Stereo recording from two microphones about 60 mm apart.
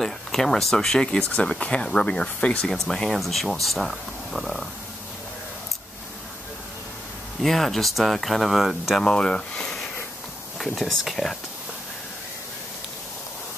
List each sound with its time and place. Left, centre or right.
0.0 s speech: centre; by 2.7 s left
2.7 s speech: centre
7.4 s speech: centre
9.0 s speech: centre